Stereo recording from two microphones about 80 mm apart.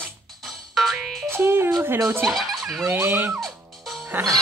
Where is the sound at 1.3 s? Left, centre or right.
Right.